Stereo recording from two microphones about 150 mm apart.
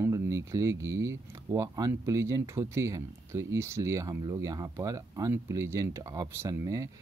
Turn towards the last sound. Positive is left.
turn(degrees=-20)  # may be behind; listen again after turning